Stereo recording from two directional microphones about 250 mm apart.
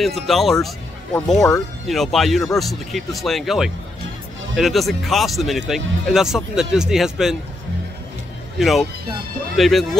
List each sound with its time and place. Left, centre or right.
0.0 s speech: centre
8.5 s speech: centre